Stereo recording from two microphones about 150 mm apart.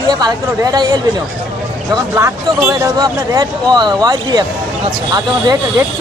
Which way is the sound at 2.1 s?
15° right (ahead or behind).